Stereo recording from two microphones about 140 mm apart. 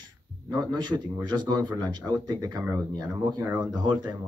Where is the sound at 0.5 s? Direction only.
30° right (ahead or behind).